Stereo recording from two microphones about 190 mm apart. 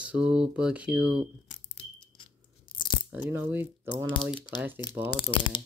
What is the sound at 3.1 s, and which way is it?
Speech, 10° right (ahead or behind).